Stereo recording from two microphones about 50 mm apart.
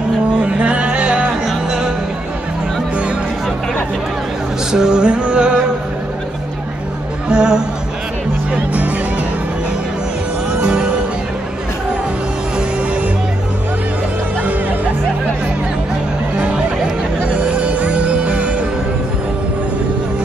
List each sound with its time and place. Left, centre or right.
0.4 s music: right
1.5 s music: centre
4.7 s music: centre
7.2 s music: centre
10.6 s music: right
16.3 s music: right